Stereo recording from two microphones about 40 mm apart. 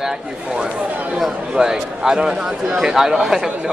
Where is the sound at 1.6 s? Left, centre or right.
Centre.